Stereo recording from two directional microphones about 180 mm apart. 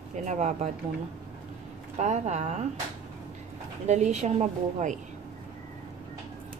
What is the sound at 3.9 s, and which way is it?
Speech, 40° right (ahead or behind).